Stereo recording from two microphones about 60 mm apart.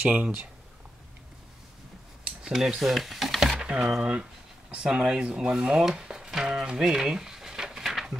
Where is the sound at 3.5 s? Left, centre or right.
Centre.